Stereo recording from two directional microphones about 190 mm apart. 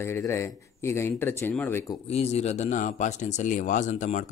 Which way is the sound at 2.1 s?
35° left (ahead or behind).